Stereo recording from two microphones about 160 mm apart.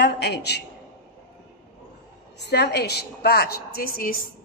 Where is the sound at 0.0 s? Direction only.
90° left.